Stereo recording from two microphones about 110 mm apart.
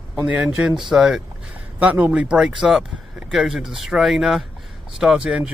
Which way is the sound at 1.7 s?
15° right (ahead or behind).